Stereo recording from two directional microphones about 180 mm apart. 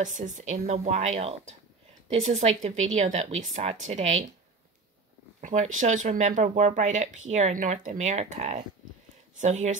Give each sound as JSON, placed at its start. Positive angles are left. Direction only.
{"t": 0.0, "sound": "speech", "side_deg": -45}
{"t": 5.4, "sound": "speech", "side_deg": -45}